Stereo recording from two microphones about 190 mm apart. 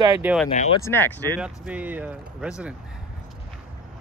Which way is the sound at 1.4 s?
5° right (ahead or behind).